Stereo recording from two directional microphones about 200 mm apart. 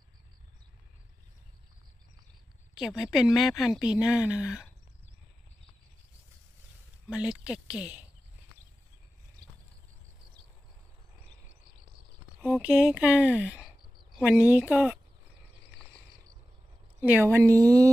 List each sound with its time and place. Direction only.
2.7 s a woman's voice: centre (ahead or behind)
7.1 s a woman's voice: 5° right (ahead or behind)
12.4 s speech: 5° right (ahead or behind)
17.0 s speech: 10° right (ahead or behind)